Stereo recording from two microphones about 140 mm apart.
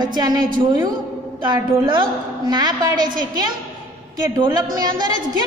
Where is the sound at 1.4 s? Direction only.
35° right (ahead or behind).